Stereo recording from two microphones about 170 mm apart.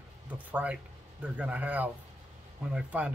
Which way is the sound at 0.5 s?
10° right (ahead or behind).